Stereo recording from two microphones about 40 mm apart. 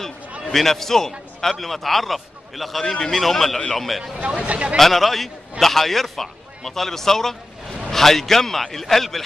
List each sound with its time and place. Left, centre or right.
0.5 s a man's voice: centre
4.4 s speech: right
4.7 s a man's voice: centre